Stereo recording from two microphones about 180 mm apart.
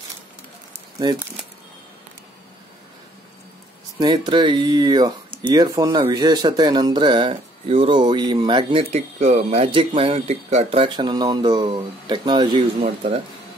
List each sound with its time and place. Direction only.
4.0 s speech: 25° right (ahead or behind)
8.9 s speech: 35° right (ahead or behind)
12.8 s speech: 35° right (ahead or behind)